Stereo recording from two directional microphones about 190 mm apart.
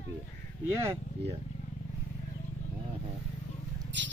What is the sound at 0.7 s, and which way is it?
Speech, 15° right (ahead or behind).